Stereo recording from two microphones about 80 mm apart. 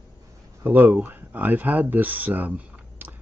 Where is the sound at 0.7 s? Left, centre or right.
Right.